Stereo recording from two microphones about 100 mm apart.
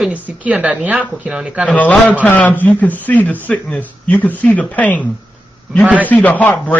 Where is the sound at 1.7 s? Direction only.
15° left (ahead or behind).